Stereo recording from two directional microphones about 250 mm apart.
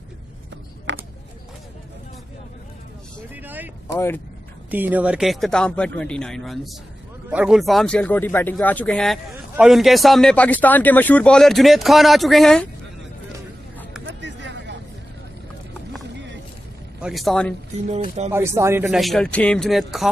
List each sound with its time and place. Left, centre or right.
0.9 s a sound: right
3.4 s speech: centre
3.8 s speech: centre
4.6 s speech: centre
14.0 s a sound: right
17.0 s speech: centre
17.8 s speech: right
18.3 s speech: centre